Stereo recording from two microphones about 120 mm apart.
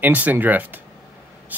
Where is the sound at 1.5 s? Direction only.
15° right (ahead or behind).